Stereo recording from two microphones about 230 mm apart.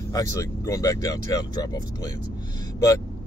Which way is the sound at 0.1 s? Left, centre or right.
Centre.